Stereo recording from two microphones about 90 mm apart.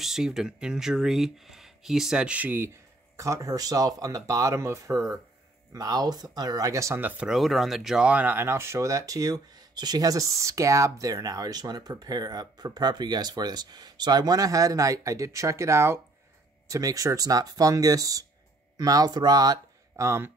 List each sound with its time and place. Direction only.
0.0 s speech: 5° right (ahead or behind); by 2.7 s 20° right (ahead or behind)
3.2 s speech: 35° right (ahead or behind)
7.0 s speech: 20° right (ahead or behind)
7.2 s speech: centre (ahead or behind); by 19.6 s 45° right (ahead or behind)
20.0 s speech: 30° right (ahead or behind)